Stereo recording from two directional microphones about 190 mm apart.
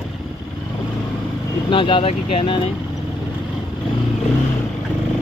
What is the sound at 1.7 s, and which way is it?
Speech, 25° left (ahead or behind).